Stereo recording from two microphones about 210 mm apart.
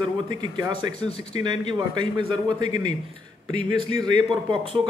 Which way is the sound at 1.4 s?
20° right (ahead or behind).